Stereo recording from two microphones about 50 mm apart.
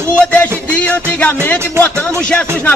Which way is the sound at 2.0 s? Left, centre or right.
Left.